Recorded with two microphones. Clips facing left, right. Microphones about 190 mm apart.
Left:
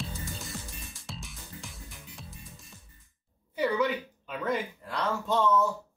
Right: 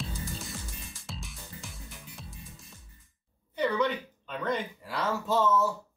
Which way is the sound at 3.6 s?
5° left (ahead or behind).